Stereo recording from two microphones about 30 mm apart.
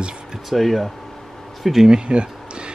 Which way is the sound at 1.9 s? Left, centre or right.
Right.